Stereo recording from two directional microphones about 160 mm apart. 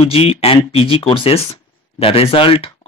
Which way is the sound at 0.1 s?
35° left (ahead or behind).